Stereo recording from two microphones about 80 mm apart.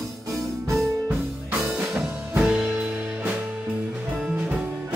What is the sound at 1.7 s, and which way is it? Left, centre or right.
Music, centre.